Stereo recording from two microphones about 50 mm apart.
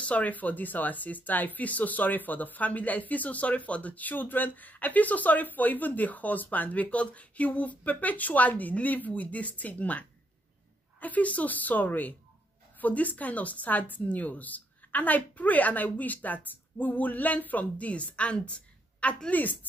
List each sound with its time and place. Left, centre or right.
0.0 s a woman's voice: left